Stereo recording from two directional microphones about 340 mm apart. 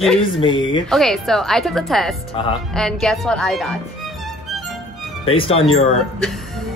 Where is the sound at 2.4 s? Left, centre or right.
Centre.